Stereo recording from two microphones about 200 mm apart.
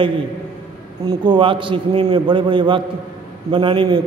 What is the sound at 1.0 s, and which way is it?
A man's voice, 25° right (ahead or behind).